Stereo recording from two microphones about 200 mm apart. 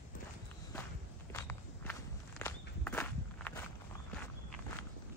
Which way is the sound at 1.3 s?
10° left (ahead or behind).